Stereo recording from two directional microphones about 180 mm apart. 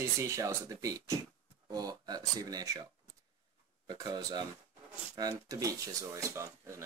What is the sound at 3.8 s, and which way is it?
Cutlery, 20° right (ahead or behind).